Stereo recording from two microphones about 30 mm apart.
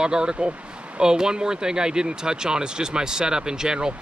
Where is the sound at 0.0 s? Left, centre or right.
Right.